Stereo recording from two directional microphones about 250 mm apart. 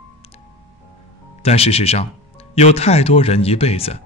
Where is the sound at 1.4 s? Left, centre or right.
Left.